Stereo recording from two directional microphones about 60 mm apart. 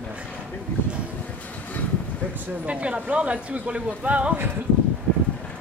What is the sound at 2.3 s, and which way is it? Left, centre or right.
A man's voice, right.